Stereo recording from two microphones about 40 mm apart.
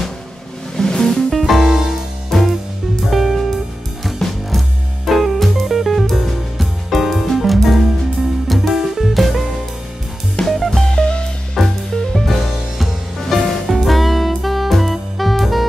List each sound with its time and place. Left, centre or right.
0.7 s music: centre
1.7 s music: centre
2.3 s music: centre
10.4 s music: left
10.7 s music: centre
11.0 s music: left
11.5 s music: centre
12.3 s music: centre